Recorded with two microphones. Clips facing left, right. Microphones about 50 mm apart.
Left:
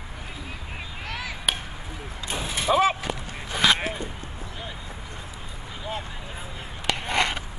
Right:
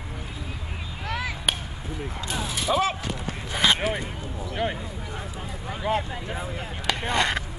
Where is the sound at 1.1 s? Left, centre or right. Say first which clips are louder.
Right 2 dB; centre.